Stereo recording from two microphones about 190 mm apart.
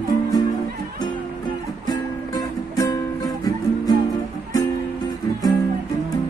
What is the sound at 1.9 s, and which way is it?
Music, 20° left (ahead or behind).